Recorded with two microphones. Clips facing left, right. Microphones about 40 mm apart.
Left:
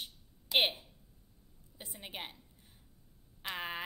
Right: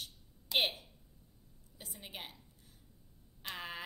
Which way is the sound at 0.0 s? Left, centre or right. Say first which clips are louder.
Left 2 dB; left.